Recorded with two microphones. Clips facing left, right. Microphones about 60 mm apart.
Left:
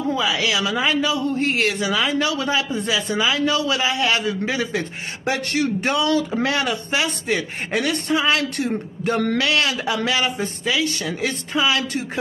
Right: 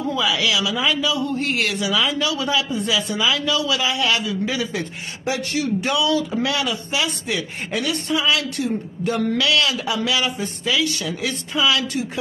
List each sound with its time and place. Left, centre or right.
0.1 s speech: left
5.9 s speech: left